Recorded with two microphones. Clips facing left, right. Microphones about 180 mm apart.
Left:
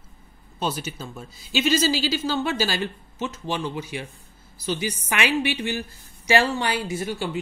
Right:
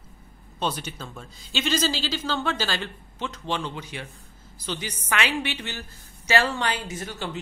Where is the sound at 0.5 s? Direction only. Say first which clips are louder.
Left 1 dB; 5° left (ahead or behind).